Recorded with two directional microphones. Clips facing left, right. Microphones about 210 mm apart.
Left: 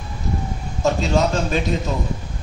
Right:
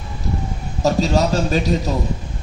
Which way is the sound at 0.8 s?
35° right (ahead or behind).